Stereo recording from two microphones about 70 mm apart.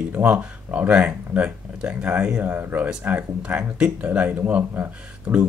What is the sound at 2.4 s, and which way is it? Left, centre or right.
Speech, right.